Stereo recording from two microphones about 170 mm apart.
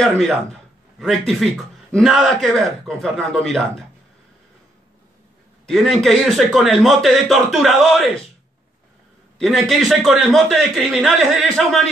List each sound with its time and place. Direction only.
0.0 s a man's voice: 5° left (ahead or behind)
5.7 s a man's voice: centre (ahead or behind)
9.4 s a man's voice: centre (ahead or behind)